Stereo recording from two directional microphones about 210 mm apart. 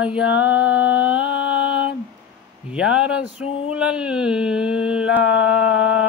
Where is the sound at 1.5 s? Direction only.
5° right (ahead or behind).